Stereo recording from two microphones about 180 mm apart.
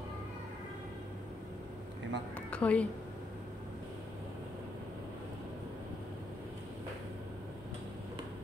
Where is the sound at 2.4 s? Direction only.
5° left (ahead or behind).